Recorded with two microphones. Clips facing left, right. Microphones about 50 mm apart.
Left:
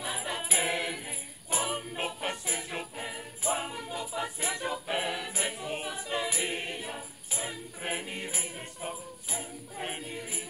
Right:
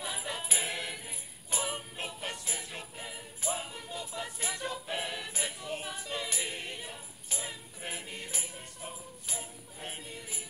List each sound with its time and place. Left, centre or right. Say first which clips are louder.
0.0 s music: left 3 dB; centre
1.5 s jingle bell: left 4 dB; centre
2.0 s music: left 5 dB; left
3.7 s music: left 4 dB; centre
5.1 s music: left 4 dB; centre
5.4 s choir: left 2 dB; left
7.8 s music: left 6 dB; left
9.9 s music: left 5 dB; left